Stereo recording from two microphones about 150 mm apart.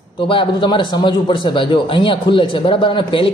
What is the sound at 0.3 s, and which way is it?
A man's voice, 35° left (ahead or behind).